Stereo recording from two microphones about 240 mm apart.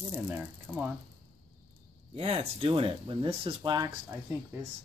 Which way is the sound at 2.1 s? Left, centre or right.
Right.